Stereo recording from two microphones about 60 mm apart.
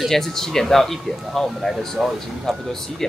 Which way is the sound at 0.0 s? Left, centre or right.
Centre.